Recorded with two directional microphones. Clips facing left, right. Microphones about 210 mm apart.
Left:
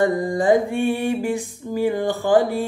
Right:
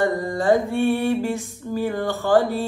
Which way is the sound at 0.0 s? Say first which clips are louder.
Left 2 dB; 15° left (ahead or behind).